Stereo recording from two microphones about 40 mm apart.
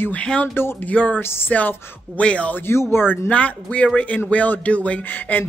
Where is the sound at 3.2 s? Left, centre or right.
Left.